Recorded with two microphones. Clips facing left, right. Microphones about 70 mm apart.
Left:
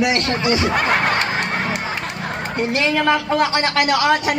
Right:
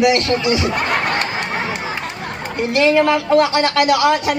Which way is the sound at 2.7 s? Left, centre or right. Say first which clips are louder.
Right 5 dB; left.